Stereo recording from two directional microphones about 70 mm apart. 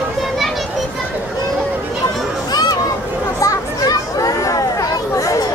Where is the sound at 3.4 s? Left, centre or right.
Left.